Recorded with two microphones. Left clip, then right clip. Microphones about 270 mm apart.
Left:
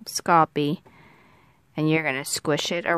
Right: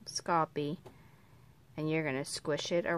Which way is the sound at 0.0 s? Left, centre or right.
Left.